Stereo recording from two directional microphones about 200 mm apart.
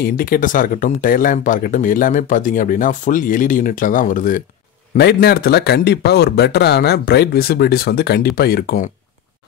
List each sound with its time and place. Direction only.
0.0 s speech: 45° left (ahead or behind)
4.9 s speech: 55° left (ahead or behind)